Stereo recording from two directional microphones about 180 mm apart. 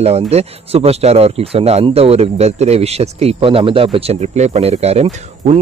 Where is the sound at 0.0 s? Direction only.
35° right (ahead or behind).